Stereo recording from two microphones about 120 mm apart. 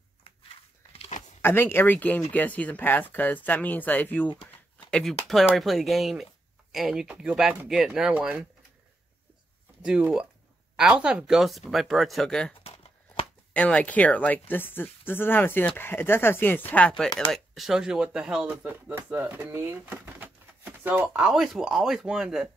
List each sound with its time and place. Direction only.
1.4 s speech: 20° left (ahead or behind)
5.6 s speech: centre (ahead or behind)
9.8 s speech: 10° right (ahead or behind)
12.6 s a sound: 55° left (ahead or behind)
13.5 s speech: 10° left (ahead or behind)
17.3 s speech: centre (ahead or behind)